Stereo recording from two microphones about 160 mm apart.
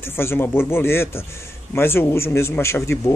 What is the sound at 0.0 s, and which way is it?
Speech, 15° left (ahead or behind).